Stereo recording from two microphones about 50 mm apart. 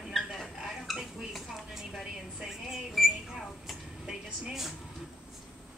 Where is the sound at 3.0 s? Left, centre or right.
Centre.